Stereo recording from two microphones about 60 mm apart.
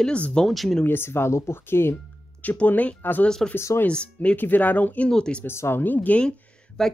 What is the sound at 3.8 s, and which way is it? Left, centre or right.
Speech, centre.